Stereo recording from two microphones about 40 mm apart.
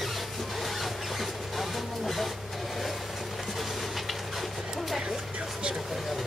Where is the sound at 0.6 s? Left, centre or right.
Centre.